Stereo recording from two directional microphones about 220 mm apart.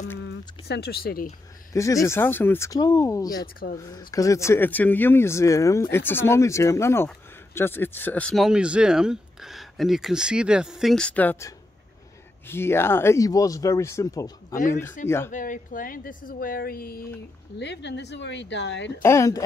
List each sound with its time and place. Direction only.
0.3 s speech: 50° left (ahead or behind)
1.7 s speech: 15° left (ahead or behind)
3.5 s speech: 40° left (ahead or behind)
4.1 s speech: 15° left (ahead or behind)
15.3 s speech: 35° left (ahead or behind)
17.6 s a woman's voice: 50° left (ahead or behind)
19.0 s speech: 15° left (ahead or behind)